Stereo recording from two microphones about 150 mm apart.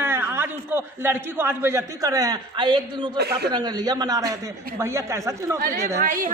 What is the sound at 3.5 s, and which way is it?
Speech, 25° right (ahead or behind).